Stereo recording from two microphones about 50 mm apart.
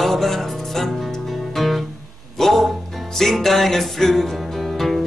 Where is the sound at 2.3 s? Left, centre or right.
Centre.